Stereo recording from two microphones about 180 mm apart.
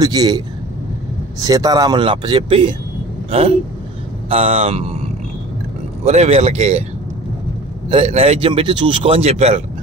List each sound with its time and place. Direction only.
0.0 s speech: 20° right (ahead or behind)
1.4 s speech: 20° right (ahead or behind)
3.3 s vehicle: 35° right (ahead or behind)
4.3 s a man's voice: 35° right (ahead or behind)
6.0 s a man's voice: 35° right (ahead or behind)
7.9 s a man's voice: 35° right (ahead or behind)